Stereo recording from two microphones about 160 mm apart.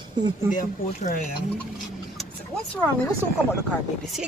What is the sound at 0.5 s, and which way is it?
Speech, 50° left (ahead or behind).